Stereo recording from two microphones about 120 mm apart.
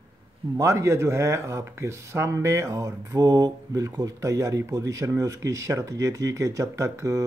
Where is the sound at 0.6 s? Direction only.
25° right (ahead or behind).